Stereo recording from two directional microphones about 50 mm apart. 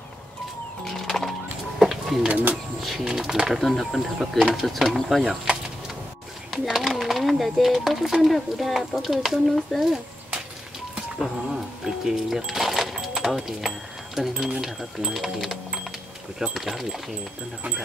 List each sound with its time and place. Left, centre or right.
0.8 s music: centre
1.8 s a sound: centre
2.2 s speech: right
2.8 s speech: centre
6.5 s speech: centre
11.1 s speech: centre
12.4 s a sound: centre
14.6 s speech: centre